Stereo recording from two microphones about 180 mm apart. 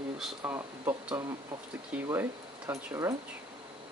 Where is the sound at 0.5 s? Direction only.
15° right (ahead or behind).